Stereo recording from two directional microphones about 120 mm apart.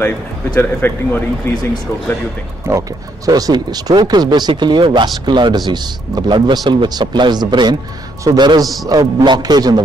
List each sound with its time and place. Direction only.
0.6 s speech: 15° left (ahead or behind)
2.7 s a man's voice: 25° right (ahead or behind)